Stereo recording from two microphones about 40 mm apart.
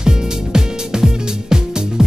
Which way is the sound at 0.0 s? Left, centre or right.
Centre.